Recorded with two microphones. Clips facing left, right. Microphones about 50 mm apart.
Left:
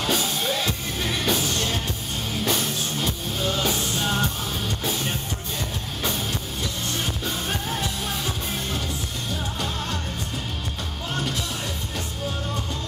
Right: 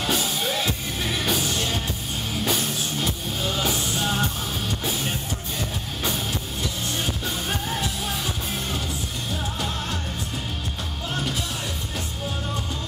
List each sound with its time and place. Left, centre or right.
0.0 s music: centre